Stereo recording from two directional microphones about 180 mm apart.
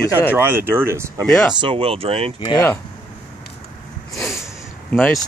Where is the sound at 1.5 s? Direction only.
25° right (ahead or behind).